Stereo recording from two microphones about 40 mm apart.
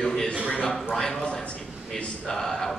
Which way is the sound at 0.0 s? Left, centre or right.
Centre.